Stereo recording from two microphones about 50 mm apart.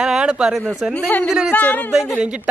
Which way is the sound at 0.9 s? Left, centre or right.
Left.